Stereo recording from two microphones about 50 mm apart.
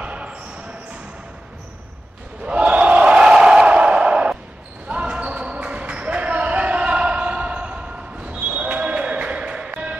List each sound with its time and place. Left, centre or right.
0.0 s basketball bounce: right
2.4 s a sound: right
4.8 s basketball bounce: right